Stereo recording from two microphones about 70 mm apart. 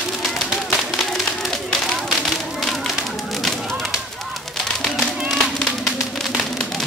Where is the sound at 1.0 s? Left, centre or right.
Centre.